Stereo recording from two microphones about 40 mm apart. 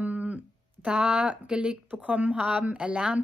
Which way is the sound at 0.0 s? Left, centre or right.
Right.